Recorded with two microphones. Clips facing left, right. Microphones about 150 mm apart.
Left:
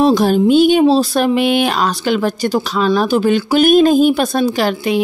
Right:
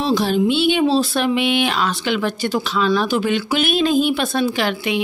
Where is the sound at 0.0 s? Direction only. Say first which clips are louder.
Left 6 dB; 45° left (ahead or behind).